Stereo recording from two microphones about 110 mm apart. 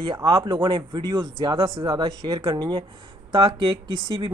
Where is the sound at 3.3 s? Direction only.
50° right (ahead or behind).